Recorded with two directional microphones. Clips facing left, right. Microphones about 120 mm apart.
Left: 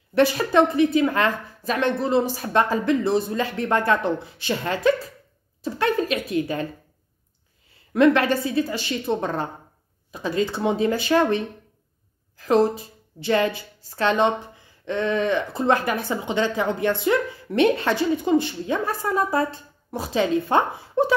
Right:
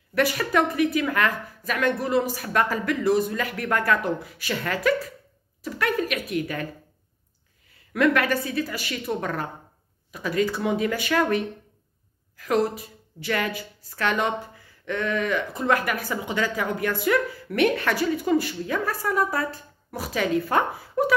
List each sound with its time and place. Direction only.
0.1 s a woman's voice: 25° left (ahead or behind)
7.9 s a woman's voice: 25° left (ahead or behind)